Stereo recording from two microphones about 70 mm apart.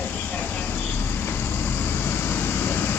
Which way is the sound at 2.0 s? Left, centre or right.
Left.